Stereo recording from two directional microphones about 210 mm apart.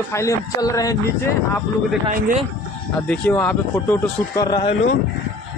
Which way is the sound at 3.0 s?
5° left (ahead or behind).